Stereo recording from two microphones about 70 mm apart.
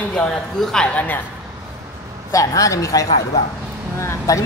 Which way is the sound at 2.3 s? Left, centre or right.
Left.